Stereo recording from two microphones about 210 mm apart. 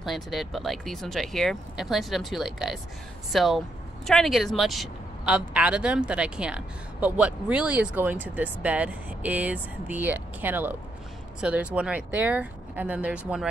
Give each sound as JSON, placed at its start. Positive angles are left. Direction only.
{"t": 0.0, "sound": "speech", "side_deg": 0}